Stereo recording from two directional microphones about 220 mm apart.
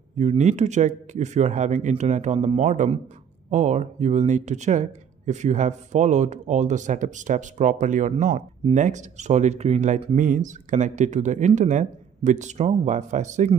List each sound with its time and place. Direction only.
0.2 s speech: 30° right (ahead or behind)